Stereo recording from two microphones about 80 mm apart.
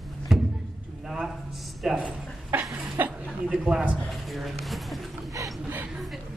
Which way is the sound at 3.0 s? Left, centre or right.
Right.